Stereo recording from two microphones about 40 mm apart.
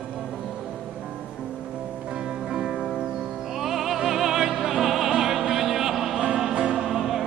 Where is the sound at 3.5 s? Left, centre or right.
Centre.